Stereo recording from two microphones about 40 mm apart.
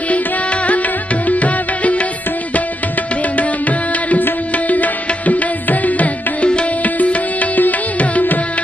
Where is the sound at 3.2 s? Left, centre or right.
Left.